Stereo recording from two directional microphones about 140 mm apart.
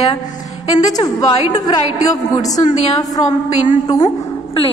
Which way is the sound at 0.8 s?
25° left (ahead or behind).